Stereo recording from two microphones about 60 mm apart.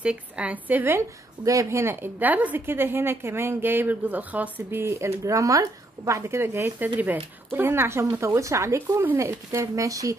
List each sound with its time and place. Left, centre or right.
0.0 s a woman's voice: right
1.4 s speech: right
2.6 s speech: right
4.6 s speech: right
7.6 s speech: right
8.3 s speech: right